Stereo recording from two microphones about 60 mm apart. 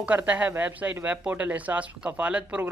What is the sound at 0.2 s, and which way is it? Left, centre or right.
Speech, right.